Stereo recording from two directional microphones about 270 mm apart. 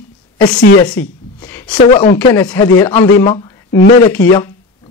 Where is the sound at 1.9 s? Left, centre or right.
Left.